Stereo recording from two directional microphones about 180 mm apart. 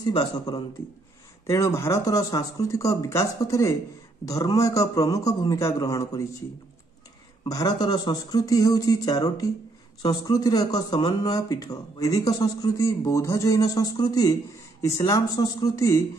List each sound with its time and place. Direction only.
0.0 s speech: 20° left (ahead or behind)
7.4 s speech: 20° left (ahead or behind)